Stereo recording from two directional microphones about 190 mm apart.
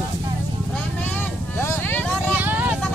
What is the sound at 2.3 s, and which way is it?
Vehicle, 10° right (ahead or behind).